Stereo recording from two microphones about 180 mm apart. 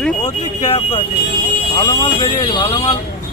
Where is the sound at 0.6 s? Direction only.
35° left (ahead or behind).